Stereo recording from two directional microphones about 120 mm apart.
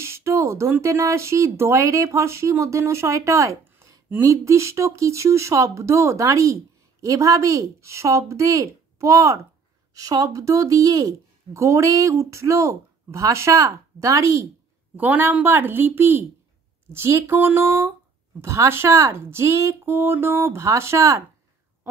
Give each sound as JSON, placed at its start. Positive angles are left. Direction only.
{"t": 0.0, "sound": "speech", "side_deg": -25}
{"t": 15.0, "sound": "a woman's voice", "side_deg": -15}